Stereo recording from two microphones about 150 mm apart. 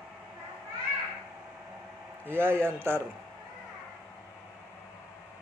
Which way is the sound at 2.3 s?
15° right (ahead or behind).